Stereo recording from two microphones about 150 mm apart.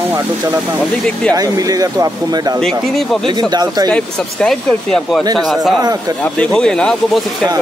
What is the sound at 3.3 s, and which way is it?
Speech, 25° right (ahead or behind).